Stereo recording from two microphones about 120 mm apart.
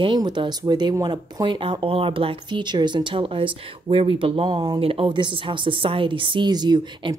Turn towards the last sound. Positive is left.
turn(degrees=-35)  # may be behind; listen again after turning